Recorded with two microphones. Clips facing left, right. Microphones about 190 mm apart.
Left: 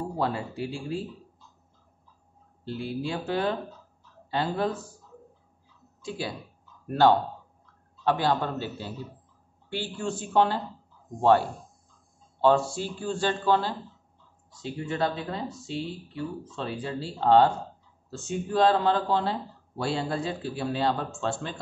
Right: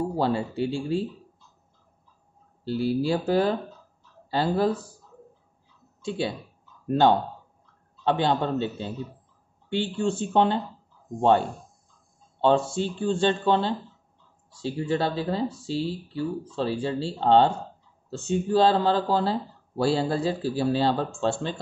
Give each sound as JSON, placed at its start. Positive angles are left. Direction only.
{"t": 0.2, "sound": "a man's voice", "side_deg": -30}
{"t": 2.6, "sound": "speech", "side_deg": -35}
{"t": 6.0, "sound": "a man's voice", "side_deg": -25}